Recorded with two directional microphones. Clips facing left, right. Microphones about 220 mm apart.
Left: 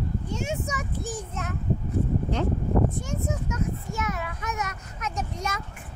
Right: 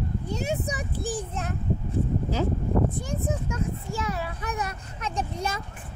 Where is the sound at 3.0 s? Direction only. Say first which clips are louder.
Right 1 dB; 35° right (ahead or behind).